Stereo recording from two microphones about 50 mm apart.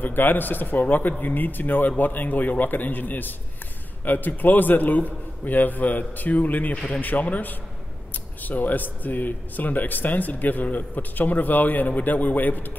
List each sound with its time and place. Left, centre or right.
0.0 s speech: left